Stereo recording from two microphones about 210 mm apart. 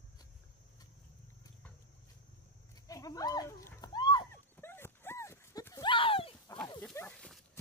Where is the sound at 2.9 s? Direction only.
15° left (ahead or behind).